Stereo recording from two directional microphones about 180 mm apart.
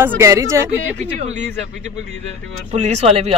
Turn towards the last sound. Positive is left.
turn(degrees=-35)  # may be behind; listen again after turning